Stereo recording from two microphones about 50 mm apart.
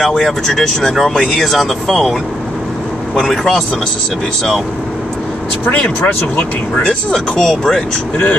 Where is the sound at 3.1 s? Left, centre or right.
Centre.